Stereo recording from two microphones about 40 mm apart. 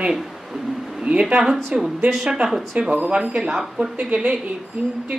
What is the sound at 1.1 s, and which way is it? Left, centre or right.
Speech, right.